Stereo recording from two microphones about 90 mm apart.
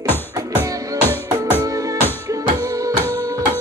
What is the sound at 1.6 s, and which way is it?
Music, 40° right (ahead or behind).